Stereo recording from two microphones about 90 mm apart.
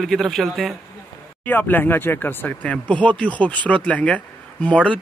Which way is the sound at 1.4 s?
20° left (ahead or behind).